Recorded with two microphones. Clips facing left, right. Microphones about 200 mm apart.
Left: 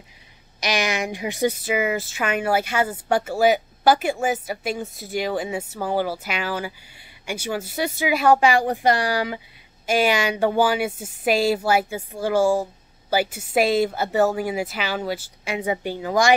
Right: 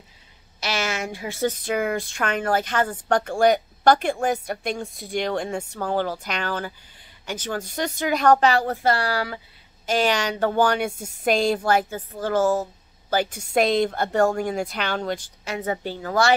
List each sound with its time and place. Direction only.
0.6 s a woman's voice: 15° left (ahead or behind)